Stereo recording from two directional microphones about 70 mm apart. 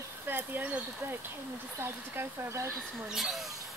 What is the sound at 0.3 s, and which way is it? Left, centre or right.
Speech, right.